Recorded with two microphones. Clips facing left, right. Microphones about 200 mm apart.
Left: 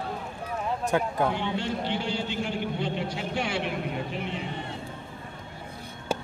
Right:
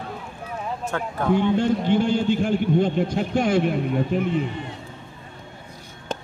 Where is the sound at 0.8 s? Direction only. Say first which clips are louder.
Left 1 dB; 15° left (ahead or behind).